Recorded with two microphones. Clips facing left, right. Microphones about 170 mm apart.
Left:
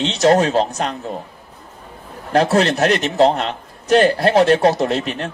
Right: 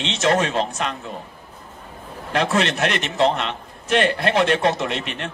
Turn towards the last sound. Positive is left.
turn(degrees=40)  # may be behind; listen again after turning